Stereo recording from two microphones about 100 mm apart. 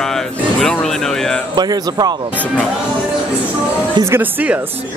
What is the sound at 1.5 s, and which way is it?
Speech, 40° right (ahead or behind).